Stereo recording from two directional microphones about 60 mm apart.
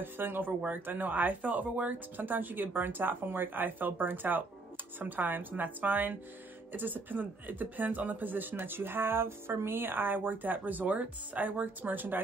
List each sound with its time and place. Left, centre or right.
0.0 s speech: right